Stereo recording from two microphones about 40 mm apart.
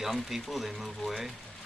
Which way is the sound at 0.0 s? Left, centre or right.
Centre.